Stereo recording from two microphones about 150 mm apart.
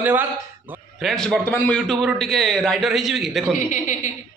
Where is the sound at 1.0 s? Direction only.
5° left (ahead or behind).